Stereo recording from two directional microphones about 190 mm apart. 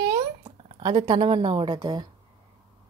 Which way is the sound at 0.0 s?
20° right (ahead or behind).